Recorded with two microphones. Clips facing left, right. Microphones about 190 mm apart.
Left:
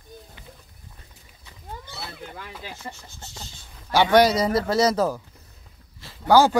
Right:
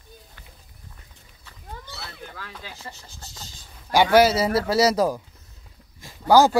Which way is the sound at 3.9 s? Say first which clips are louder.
Right 1 dB; 10° right (ahead or behind).